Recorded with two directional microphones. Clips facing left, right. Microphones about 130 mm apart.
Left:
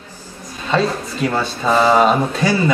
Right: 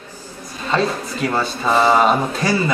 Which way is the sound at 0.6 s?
Centre (ahead or behind).